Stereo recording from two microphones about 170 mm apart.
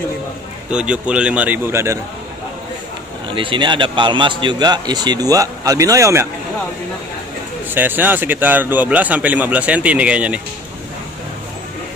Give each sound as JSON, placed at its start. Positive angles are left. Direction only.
{"t": 0.7, "sound": "a man's voice", "side_deg": -5}
{"t": 3.3, "sound": "a man's voice", "side_deg": -30}
{"t": 7.7, "sound": "a man's voice", "side_deg": -10}